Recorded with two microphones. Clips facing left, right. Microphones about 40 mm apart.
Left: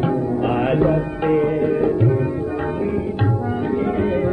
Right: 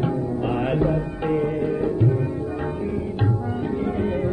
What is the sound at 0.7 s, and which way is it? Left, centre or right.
Music, left.